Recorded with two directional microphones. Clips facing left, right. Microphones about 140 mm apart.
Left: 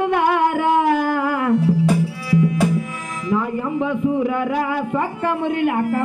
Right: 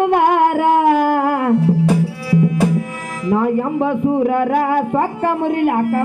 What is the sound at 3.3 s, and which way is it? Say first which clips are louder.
Speech: right 5 dB; 45° right (ahead or behind).